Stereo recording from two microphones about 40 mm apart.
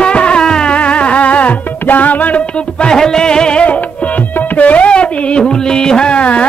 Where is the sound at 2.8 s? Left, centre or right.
Centre.